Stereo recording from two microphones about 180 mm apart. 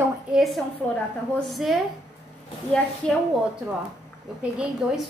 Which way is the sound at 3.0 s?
5° left (ahead or behind).